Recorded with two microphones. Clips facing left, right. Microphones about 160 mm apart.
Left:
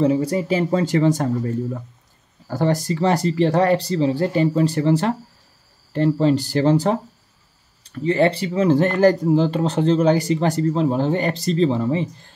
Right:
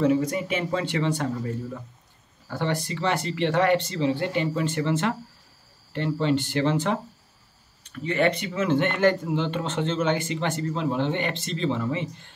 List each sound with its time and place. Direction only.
0.0 s speech: 30° left (ahead or behind)